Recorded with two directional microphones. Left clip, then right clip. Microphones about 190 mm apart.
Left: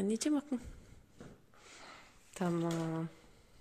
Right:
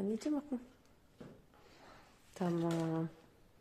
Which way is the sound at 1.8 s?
Centre (ahead or behind).